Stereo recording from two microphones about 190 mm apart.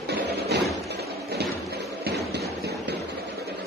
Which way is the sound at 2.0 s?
60° right (ahead or behind).